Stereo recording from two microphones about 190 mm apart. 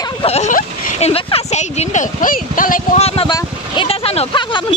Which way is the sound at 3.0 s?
30° left (ahead or behind).